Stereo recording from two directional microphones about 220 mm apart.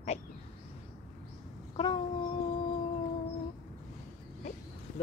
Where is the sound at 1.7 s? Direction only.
20° left (ahead or behind).